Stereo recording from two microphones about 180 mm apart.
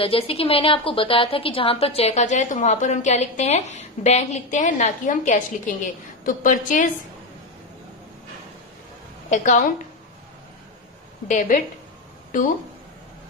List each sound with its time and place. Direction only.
0.0 s a woman's voice: 30° left (ahead or behind); by 6.9 s 50° left (ahead or behind)
9.3 s a woman's voice: 45° left (ahead or behind)
11.2 s a woman's voice: 45° left (ahead or behind)